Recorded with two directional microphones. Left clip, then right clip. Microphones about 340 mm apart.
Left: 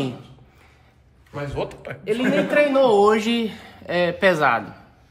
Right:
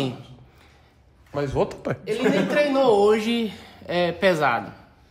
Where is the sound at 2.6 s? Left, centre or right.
Centre.